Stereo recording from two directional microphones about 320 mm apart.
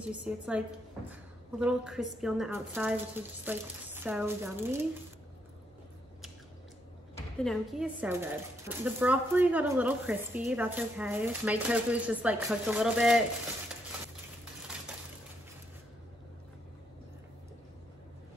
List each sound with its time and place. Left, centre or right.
0.0 s a woman's voice: centre
7.2 s a woman's voice: centre